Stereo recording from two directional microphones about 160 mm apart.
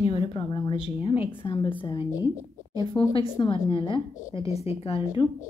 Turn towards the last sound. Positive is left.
turn(degrees=35)  # may be behind; listen again after turning